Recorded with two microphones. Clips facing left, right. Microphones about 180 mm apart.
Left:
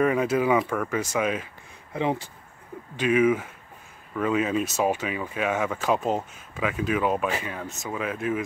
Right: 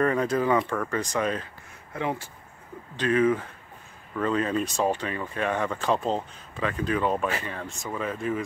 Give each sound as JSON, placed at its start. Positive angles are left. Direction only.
{"t": 0.0, "sound": "speech", "side_deg": 10}